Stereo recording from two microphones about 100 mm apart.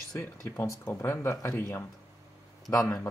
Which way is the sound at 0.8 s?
20° left (ahead or behind).